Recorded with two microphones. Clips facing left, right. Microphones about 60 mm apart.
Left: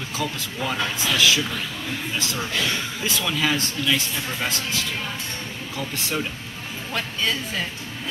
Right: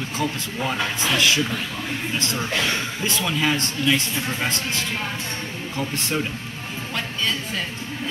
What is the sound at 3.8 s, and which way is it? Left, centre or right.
Speech, right.